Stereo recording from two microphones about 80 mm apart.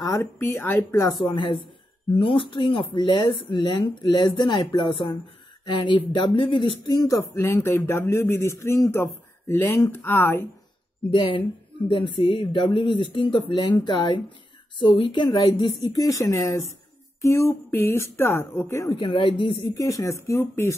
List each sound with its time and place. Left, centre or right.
0.2 s speech: left
1.2 s speech: left
5.7 s speech: left
7.0 s speech: left
11.1 s speech: left
13.7 s speech: left
16.0 s speech: left
18.9 s speech: left
19.7 s speech: left